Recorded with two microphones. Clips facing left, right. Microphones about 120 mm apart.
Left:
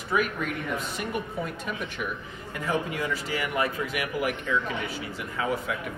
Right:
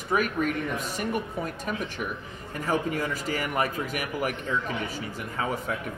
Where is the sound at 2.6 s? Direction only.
45° right (ahead or behind).